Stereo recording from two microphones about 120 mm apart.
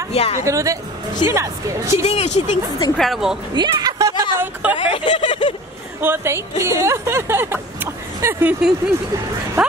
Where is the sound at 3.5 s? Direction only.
35° right (ahead or behind).